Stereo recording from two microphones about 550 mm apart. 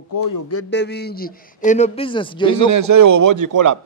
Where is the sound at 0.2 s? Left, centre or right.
Left.